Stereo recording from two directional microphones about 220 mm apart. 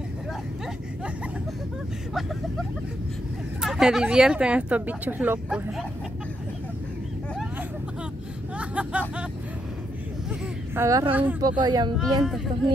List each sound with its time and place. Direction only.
3.6 s speech: centre (ahead or behind)
8.5 s a sound: 5° right (ahead or behind)
10.7 s speech: 15° right (ahead or behind)
12.0 s speech: centre (ahead or behind)